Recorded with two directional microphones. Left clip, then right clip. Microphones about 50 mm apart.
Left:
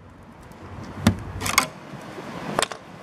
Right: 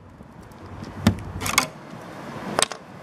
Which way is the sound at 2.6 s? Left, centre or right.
Right.